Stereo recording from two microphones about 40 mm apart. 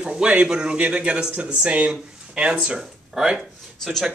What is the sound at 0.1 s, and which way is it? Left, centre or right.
Speech, right.